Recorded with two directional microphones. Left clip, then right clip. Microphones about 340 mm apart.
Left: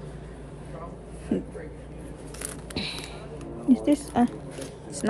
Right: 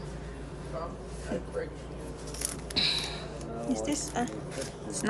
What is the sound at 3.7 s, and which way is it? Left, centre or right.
Speech, centre.